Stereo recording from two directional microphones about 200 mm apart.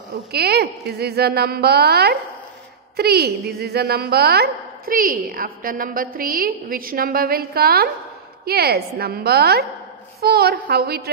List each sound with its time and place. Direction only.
0.3 s a woman's voice: 55° right (ahead or behind)